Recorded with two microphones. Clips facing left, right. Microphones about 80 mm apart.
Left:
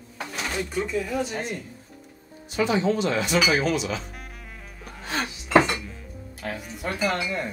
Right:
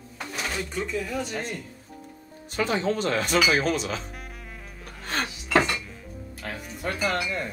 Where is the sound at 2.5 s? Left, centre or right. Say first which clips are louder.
Left 3 dB; right.